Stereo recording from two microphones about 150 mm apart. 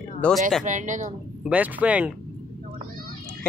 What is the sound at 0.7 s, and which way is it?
Speech, 55° right (ahead or behind).